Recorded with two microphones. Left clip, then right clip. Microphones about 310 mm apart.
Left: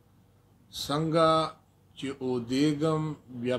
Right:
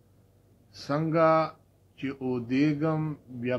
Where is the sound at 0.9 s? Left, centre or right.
Centre.